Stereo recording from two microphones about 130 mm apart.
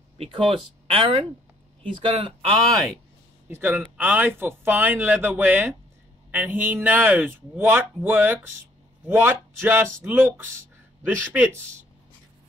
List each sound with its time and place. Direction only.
0.8 s speech: 45° right (ahead or behind)
2.7 s speech: centre (ahead or behind)
3.4 s speech: 15° right (ahead or behind)